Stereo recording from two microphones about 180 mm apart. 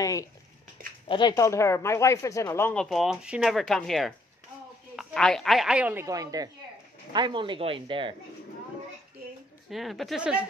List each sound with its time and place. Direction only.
0.0 s a sound: 20° left (ahead or behind)
1.0 s speech: 25° left (ahead or behind)
1.3 s speech: 15° left (ahead or behind); by 8.1 s 30° right (ahead or behind)
9.7 s speech: centre (ahead or behind)